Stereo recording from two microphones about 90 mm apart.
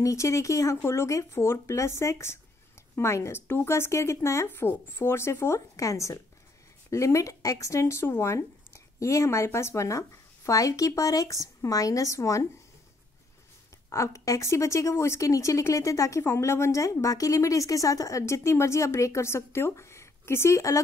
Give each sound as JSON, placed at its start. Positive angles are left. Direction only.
{"t": 0.0, "sound": "a woman's voice", "side_deg": 35}
{"t": 13.8, "sound": "a woman's voice", "side_deg": 35}